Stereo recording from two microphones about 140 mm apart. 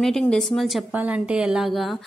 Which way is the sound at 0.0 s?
Centre (ahead or behind).